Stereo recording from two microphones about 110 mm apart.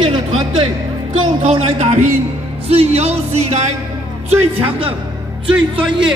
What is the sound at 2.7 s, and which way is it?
Speech, 70° right (ahead or behind).